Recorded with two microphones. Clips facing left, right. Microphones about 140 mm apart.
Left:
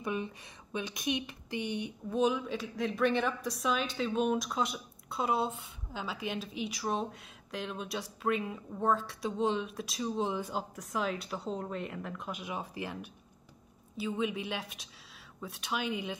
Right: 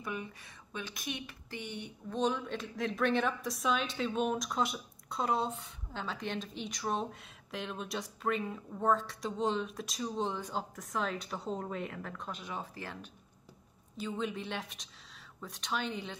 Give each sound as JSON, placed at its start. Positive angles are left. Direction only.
{"t": 0.0, "sound": "a woman's voice", "side_deg": 20}